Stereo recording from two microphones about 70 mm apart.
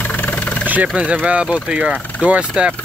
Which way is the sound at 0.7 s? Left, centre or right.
Right.